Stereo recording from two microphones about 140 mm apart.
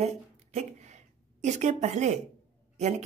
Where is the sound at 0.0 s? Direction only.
50° right (ahead or behind).